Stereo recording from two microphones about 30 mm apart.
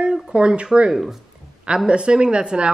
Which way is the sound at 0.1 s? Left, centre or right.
Right.